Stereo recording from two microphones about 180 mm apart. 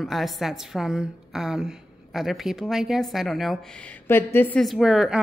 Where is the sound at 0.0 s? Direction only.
Centre (ahead or behind).